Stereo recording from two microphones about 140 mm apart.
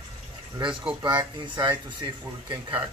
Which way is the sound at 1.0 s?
35° right (ahead or behind).